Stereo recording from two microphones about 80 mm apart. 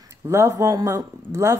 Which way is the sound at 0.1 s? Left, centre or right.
Right.